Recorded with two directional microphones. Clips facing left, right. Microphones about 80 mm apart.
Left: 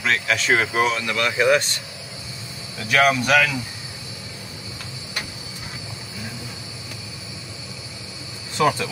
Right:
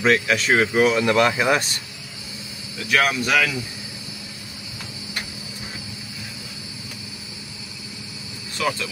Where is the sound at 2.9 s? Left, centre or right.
Centre.